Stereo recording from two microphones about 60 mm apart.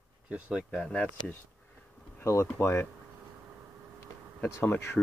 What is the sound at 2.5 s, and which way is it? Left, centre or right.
Speech, left.